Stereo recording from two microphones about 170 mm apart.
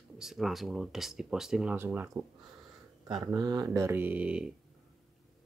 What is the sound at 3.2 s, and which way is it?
Speech, 25° right (ahead or behind).